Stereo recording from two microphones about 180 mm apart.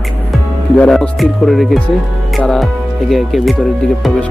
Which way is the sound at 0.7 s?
5° left (ahead or behind).